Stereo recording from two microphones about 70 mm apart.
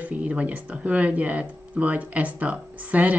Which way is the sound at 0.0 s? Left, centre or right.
Centre.